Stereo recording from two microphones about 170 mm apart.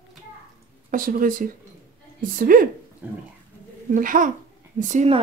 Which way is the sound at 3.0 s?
5° right (ahead or behind).